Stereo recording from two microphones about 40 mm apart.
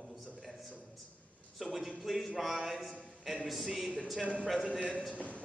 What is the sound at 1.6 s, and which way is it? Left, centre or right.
Speech, centre.